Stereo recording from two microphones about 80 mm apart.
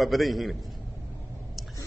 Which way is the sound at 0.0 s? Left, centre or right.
Centre.